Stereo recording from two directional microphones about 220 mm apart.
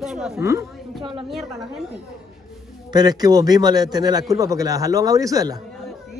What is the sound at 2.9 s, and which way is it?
A man's voice, 20° right (ahead or behind).